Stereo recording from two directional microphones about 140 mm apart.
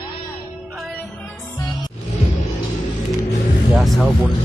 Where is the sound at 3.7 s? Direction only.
Centre (ahead or behind).